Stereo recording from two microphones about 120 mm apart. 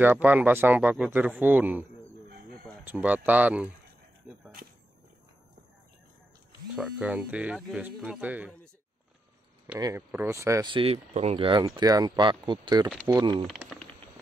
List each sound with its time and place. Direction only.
0.0 s speech: 15° right (ahead or behind)
4.2 s a sound: 15° right (ahead or behind)
6.7 s speech: 10° right (ahead or behind)
9.8 s speech: 30° right (ahead or behind)
10.6 s speech: 45° right (ahead or behind)
11.1 s speech: 55° right (ahead or behind); by 12.9 s 35° right (ahead or behind)